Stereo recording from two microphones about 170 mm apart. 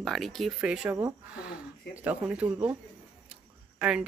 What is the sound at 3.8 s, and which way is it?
Speech, 5° right (ahead or behind).